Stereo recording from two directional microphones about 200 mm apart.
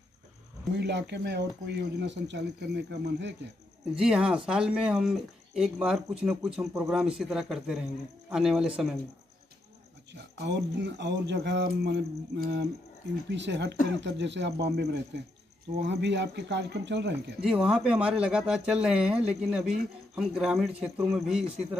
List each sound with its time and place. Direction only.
0.7 s speech: 60° right (ahead or behind)
4.0 s speech: 5° right (ahead or behind)
10.3 s speech: 60° right (ahead or behind)
17.4 s speech: 5° right (ahead or behind)